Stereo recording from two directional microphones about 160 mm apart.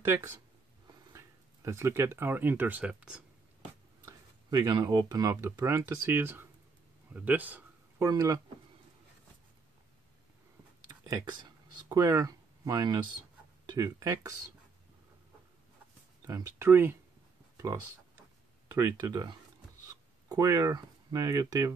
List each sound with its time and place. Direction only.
0.0 s speech: 15° right (ahead or behind)
4.0 s speech: 25° right (ahead or behind)
7.2 s a sound: 10° right (ahead or behind)
8.1 s speech: 20° right (ahead or behind)
11.1 s speech: 25° right (ahead or behind)
16.3 s speech: 20° right (ahead or behind)
18.7 s speech: 25° right (ahead or behind)